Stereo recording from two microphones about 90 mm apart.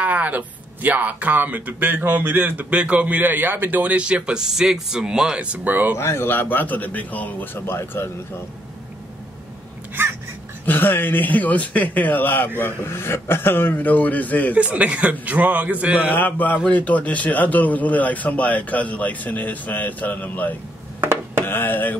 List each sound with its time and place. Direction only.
0.0 s speech: 15° right (ahead or behind)
5.9 s speech: 30° left (ahead or behind)
10.6 s speech: 20° left (ahead or behind)
14.5 s speech: 15° right (ahead or behind)
16.1 s a man's voice: 20° left (ahead or behind)
21.0 s a sound: 25° right (ahead or behind)
21.5 s speech: 25° left (ahead or behind)